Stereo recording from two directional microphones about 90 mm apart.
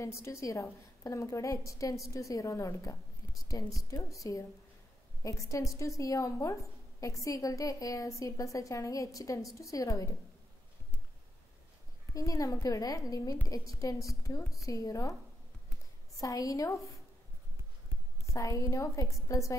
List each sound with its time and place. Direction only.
0.0 s a woman's voice: 35° left (ahead or behind)
12.1 s a woman's voice: 40° left (ahead or behind)
16.2 s a woman's voice: 40° left (ahead or behind)
18.3 s a woman's voice: 35° left (ahead or behind)